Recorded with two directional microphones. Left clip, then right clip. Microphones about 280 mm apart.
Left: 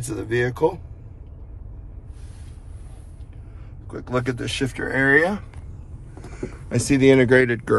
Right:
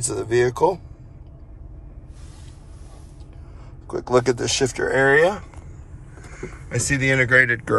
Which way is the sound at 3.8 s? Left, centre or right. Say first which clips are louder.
Right 7 dB; centre.